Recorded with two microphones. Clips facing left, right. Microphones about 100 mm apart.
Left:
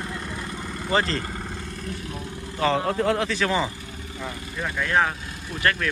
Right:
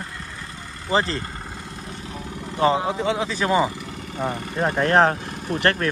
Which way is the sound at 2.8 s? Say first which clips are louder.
Even; centre (ahead or behind).